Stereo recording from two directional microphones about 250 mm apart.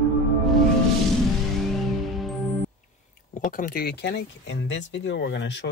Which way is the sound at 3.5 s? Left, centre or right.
Left.